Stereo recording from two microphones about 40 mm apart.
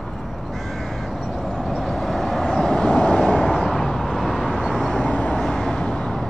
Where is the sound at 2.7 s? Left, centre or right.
Left.